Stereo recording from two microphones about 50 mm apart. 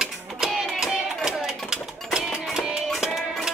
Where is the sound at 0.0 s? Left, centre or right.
Centre.